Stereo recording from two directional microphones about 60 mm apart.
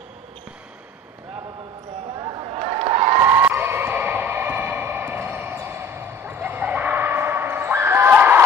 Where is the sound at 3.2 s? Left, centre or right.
Right.